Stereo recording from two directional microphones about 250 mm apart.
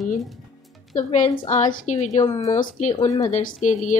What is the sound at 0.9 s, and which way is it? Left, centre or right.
A woman's voice, left.